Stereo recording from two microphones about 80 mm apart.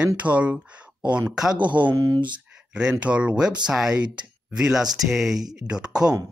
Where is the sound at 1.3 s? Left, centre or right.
Centre.